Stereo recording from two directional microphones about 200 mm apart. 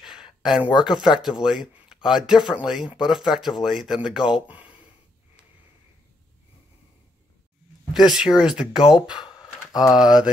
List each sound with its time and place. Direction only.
0.0 s a sound: centre (ahead or behind)
0.8 s speech: centre (ahead or behind)
7.9 s speech: 5° right (ahead or behind)
9.7 s speech: 20° left (ahead or behind)
10.0 s speech: 5° right (ahead or behind)